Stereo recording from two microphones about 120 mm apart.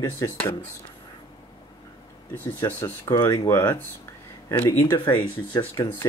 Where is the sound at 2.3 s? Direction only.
15° left (ahead or behind).